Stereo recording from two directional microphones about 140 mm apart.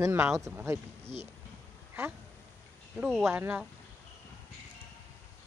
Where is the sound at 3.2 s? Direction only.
10° right (ahead or behind).